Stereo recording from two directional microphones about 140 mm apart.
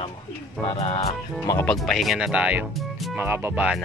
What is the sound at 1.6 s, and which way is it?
Speech, 5° left (ahead or behind).